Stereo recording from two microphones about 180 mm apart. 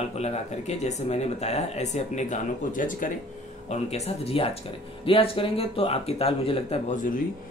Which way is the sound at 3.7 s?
35° left (ahead or behind).